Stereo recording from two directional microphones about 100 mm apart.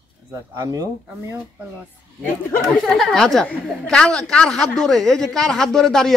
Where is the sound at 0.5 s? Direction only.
40° right (ahead or behind).